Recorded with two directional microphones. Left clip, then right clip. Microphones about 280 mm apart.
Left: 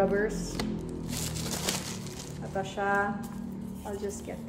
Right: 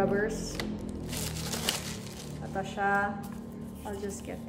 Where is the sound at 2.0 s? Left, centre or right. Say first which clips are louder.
Left 2 dB; left.